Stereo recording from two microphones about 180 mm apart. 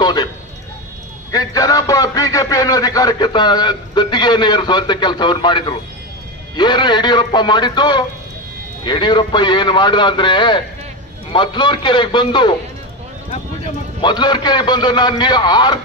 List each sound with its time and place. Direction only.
0.0 s a man's voice: 25° left (ahead or behind)
1.3 s speech: 20° left (ahead or behind)